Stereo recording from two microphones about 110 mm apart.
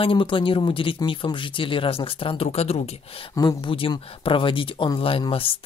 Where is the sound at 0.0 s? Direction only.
50° left (ahead or behind); by 2.8 s 65° left (ahead or behind).